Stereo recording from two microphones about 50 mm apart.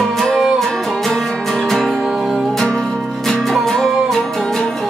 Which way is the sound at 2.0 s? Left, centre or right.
Centre.